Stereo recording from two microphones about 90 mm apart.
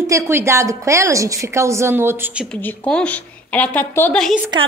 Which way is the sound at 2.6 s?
15° left (ahead or behind).